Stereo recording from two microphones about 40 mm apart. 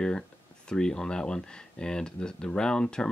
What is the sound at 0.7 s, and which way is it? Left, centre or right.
Speech, centre.